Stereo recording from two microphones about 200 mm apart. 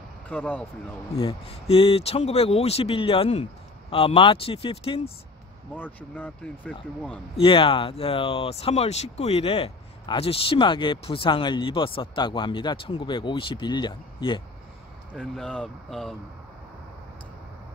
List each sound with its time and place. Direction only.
0.3 s speech: 5° left (ahead or behind)
1.1 s speech: 30° left (ahead or behind)
5.8 s speech: 10° left (ahead or behind)
7.3 s speech: 25° left (ahead or behind)
15.1 s speech: centre (ahead or behind)